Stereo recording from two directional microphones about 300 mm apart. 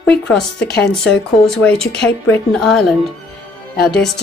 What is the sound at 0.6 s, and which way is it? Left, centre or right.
Speech, left.